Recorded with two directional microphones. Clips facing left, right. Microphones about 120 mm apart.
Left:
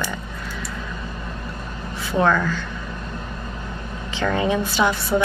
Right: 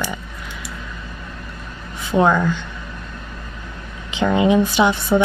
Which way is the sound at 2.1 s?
15° right (ahead or behind).